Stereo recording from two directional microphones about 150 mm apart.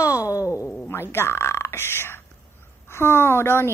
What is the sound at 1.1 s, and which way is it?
Speech, 15° left (ahead or behind).